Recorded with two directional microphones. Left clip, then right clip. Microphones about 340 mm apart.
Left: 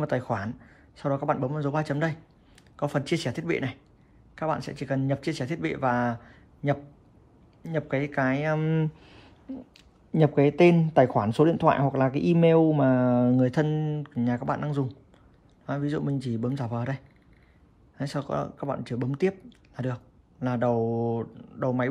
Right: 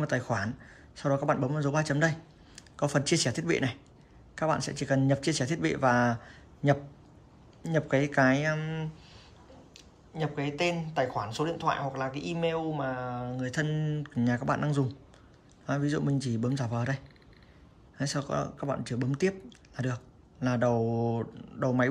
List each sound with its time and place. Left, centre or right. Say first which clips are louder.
0.0 s a man's voice: left 2 dB; centre
8.6 s a sound: left 9 dB; centre
9.8 s speech: left 11 dB; centre